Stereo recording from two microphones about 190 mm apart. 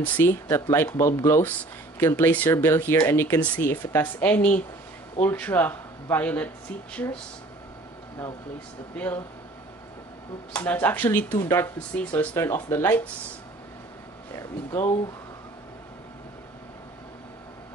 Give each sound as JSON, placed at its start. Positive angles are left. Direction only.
{"t": 0.0, "sound": "speech", "side_deg": 10}
{"t": 8.9, "sound": "speech", "side_deg": 10}
{"t": 10.5, "sound": "speech", "side_deg": 10}
{"t": 14.3, "sound": "speech", "side_deg": 15}